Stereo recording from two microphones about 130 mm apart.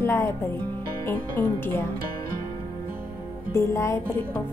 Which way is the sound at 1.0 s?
15° left (ahead or behind).